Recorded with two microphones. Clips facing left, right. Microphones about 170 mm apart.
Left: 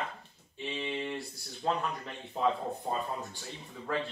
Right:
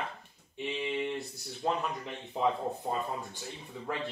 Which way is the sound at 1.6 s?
10° right (ahead or behind).